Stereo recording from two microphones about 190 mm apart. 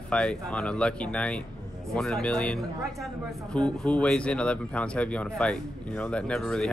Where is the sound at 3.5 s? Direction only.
5° left (ahead or behind).